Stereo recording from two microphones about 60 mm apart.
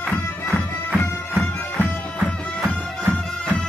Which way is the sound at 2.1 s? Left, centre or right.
Left.